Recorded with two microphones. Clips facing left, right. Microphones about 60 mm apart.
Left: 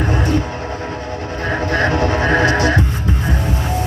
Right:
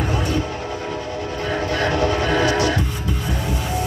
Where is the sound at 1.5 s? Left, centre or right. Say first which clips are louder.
Left 4 dB; left.